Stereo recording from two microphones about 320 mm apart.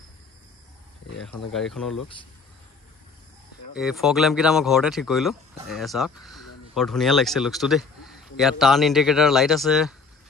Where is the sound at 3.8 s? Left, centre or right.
Centre.